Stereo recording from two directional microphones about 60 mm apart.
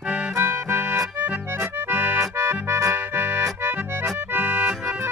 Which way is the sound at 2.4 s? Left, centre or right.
Right.